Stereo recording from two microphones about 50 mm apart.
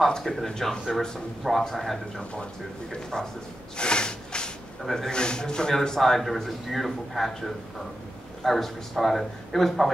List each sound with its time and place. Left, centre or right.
0.0 s a man's voice: centre
2.9 s a man's voice: centre
3.7 s a sound: centre
4.9 s a man's voice: centre